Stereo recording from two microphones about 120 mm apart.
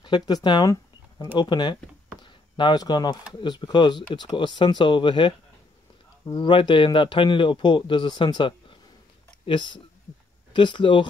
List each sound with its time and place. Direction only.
0.0 s speech: 40° left (ahead or behind)
2.2 s a sound: 40° left (ahead or behind)
3.3 s a man's voice: 35° left (ahead or behind)